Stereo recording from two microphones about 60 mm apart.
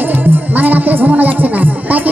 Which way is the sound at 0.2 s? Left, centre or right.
Right.